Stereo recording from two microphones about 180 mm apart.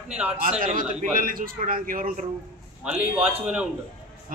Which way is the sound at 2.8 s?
10° right (ahead or behind).